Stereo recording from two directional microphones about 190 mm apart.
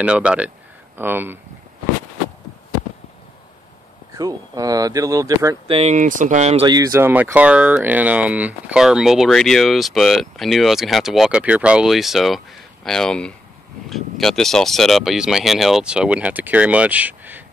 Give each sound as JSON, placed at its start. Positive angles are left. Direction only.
{"t": 0.0, "sound": "speech", "side_deg": -5}
{"t": 4.1, "sound": "speech", "side_deg": -20}
{"t": 5.7, "sound": "speech", "side_deg": -35}